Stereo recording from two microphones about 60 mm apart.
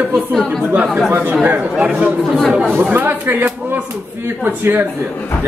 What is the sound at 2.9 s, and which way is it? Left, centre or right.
A man's voice, right.